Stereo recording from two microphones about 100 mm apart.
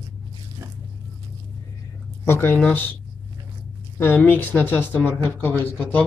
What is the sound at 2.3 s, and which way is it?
Speech, 25° left (ahead or behind).